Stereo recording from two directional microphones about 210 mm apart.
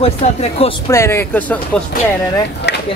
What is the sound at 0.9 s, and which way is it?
Speech, 10° left (ahead or behind).